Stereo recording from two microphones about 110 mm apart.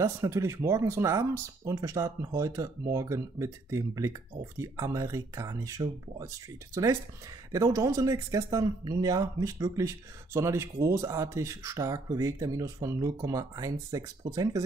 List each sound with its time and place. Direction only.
0.0 s speech: 25° right (ahead or behind)